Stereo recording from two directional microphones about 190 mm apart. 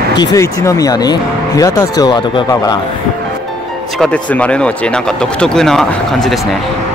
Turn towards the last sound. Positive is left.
turn(degrees=0)  # may be behind; listen again after turning